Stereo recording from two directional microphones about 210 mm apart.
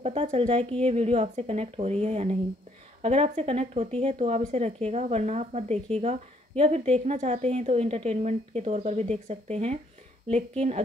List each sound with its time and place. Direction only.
0.0 s speech: 30° right (ahead or behind)